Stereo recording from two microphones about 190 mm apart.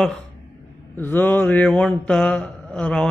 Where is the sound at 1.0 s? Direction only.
10° left (ahead or behind).